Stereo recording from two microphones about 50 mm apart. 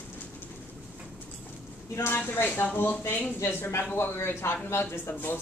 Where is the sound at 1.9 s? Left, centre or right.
Left.